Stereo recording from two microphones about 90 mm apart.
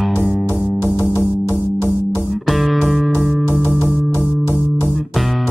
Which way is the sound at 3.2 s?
15° right (ahead or behind).